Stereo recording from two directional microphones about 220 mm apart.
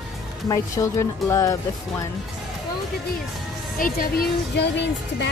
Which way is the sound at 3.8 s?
40° left (ahead or behind).